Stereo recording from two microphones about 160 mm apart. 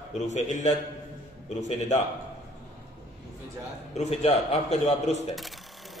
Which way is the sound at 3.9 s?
40° left (ahead or behind).